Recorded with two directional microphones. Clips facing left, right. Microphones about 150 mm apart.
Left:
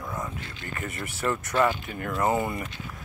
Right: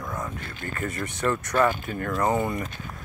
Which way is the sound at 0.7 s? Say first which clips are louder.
Right 4 dB; 20° left (ahead or behind).